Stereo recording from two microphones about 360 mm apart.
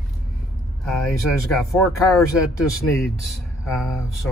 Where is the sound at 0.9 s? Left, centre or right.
Centre.